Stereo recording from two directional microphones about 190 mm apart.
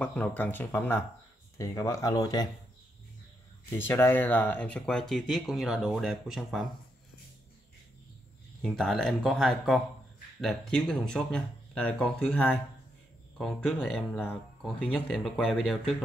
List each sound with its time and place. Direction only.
0.0 s speech: 5° left (ahead or behind)
3.7 s speech: 10° left (ahead or behind)
8.6 s speech: centre (ahead or behind)